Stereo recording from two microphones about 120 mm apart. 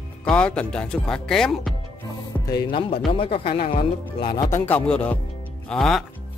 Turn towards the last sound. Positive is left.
turn(degrees=0)  # may be behind; listen again after turning